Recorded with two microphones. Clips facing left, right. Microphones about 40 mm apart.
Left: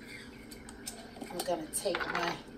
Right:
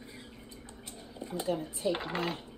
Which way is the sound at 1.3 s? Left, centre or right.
Right.